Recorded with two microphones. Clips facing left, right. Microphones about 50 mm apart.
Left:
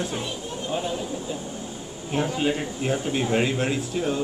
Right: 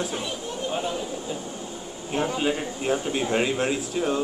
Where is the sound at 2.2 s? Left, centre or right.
Centre.